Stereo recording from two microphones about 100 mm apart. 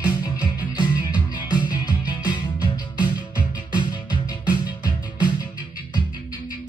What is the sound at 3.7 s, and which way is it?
Music, 50° left (ahead or behind).